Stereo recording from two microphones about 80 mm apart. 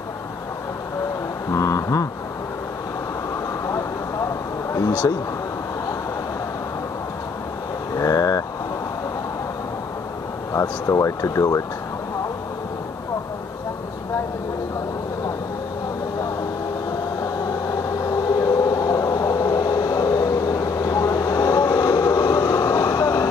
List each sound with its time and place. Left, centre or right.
1.5 s vehicle: left
5.0 s vehicle: left
7.9 s vehicle: left
10.5 s speech: left
18.0 s train: left